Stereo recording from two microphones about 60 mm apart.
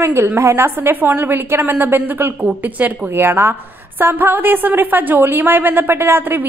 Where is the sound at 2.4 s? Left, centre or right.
Right.